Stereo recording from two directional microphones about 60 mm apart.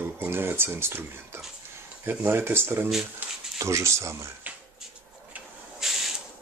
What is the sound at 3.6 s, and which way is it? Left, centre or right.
Speech, right.